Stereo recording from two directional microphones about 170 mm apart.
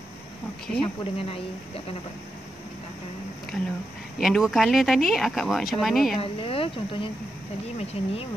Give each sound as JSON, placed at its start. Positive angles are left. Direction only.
{"t": 0.7, "sound": "speech", "side_deg": 35}
{"t": 4.2, "sound": "speech", "side_deg": 0}
{"t": 6.1, "sound": "speech", "side_deg": 35}